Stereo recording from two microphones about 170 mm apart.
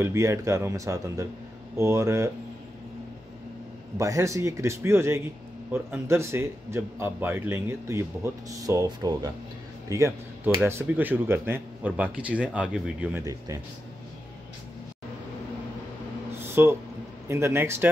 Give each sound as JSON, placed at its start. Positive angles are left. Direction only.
{"t": 0.0, "sound": "speech", "side_deg": -15}
{"t": 4.0, "sound": "a man's voice", "side_deg": -20}
{"t": 13.2, "sound": "speech", "side_deg": -20}
{"t": 16.3, "sound": "a sound", "side_deg": -15}
{"t": 17.3, "sound": "speech", "side_deg": -15}